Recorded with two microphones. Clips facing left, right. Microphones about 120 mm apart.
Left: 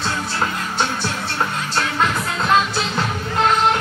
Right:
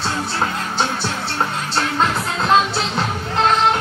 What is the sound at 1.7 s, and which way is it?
Music, 25° right (ahead or behind).